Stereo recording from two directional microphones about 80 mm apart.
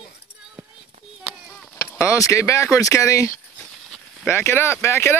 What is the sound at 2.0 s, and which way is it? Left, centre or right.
Speech, left.